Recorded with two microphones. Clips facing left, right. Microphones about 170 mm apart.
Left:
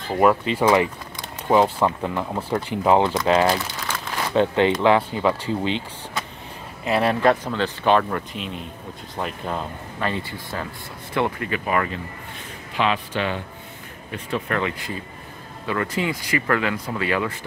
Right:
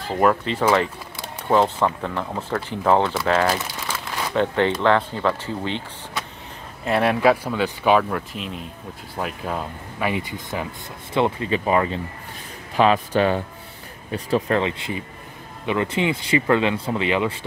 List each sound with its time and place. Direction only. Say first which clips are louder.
0.1 s speech: left 1 dB; 5° left (ahead or behind)
6.8 s speech: right 1 dB; centre (ahead or behind); by 12.0 s 25° right (ahead or behind)
12.7 s speech: right 5 dB; 40° right (ahead or behind); by 17.5 s 20° right (ahead or behind)